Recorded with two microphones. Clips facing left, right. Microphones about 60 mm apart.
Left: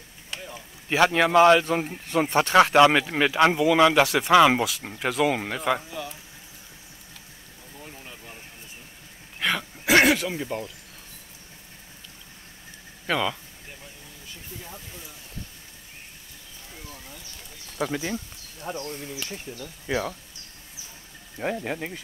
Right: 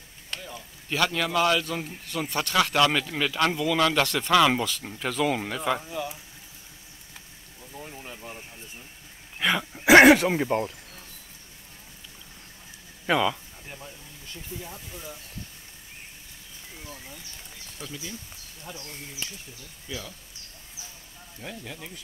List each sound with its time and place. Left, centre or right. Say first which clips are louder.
0.3 s a sound: even; centre
0.8 s speech: left 6 dB; left
5.1 s speech: left 2 dB; centre
7.8 s a sound: right 2 dB; centre
9.4 s speech: right 1 dB; centre
9.8 s speech: right 5 dB; right
13.0 s speech: right 2 dB; centre
14.5 s speech: right 4 dB; left
17.7 s speech: left 11 dB; left
18.6 s speech: left 9 dB; left
19.2 s speech: left 6 dB; left
21.4 s speech: left 11 dB; left